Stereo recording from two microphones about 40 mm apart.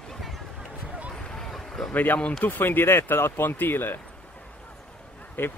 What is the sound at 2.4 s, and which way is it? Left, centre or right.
Speech, left.